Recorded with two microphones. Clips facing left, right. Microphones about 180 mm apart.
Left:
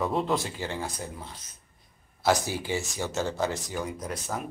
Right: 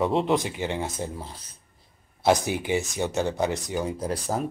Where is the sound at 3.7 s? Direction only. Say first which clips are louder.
Right 5 dB; 30° right (ahead or behind).